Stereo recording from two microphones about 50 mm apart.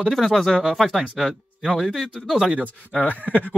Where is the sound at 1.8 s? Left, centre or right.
Centre.